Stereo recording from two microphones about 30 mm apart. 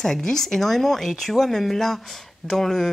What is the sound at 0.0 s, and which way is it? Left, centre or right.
Speech, centre.